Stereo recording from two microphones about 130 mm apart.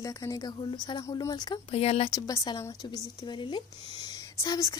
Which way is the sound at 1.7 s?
50° left (ahead or behind).